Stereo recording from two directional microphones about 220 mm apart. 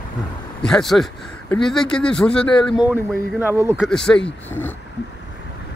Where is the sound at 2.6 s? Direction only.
5° right (ahead or behind).